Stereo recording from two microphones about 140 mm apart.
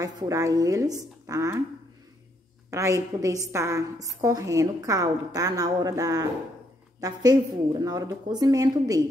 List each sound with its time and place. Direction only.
0.0 s a woman's voice: 20° right (ahead or behind)
2.7 s a woman's voice: 20° right (ahead or behind)